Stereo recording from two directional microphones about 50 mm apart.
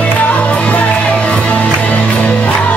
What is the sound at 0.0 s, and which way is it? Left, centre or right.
Music, left.